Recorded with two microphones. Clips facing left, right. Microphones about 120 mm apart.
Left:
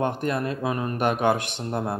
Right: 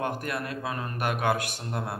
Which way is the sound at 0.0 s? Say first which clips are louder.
Left 6 dB; 25° left (ahead or behind).